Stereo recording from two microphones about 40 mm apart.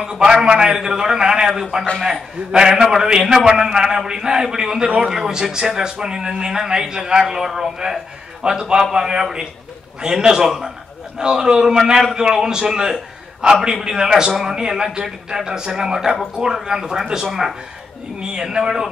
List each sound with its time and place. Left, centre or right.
0.3 s a man's voice: centre
18.2 s a man's voice: centre